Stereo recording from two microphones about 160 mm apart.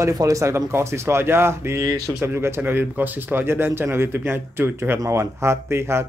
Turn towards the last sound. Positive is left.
turn(degrees=-15)  # may be behind; listen again after turning